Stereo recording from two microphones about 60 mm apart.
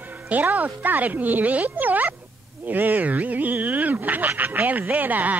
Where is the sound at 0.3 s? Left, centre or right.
Right.